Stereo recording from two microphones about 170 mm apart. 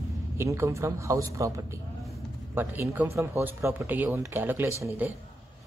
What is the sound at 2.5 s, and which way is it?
Speech, 10° right (ahead or behind).